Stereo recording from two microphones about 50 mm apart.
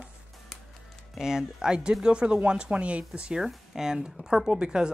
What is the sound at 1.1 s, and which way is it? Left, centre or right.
Speech, centre.